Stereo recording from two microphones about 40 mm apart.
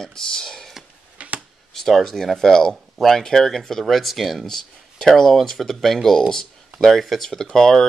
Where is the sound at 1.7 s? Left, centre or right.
Centre.